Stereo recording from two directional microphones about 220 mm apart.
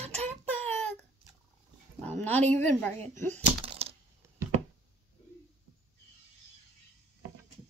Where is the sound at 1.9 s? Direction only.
10° left (ahead or behind).